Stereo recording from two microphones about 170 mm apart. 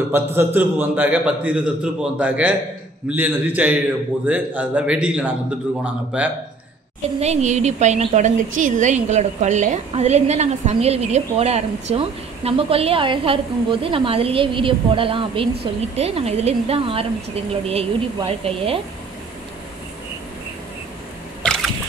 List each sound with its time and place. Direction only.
0.1 s a man's voice: 15° right (ahead or behind)
7.2 s a woman's voice: 40° right (ahead or behind)
21.4 s a sound: 5° left (ahead or behind)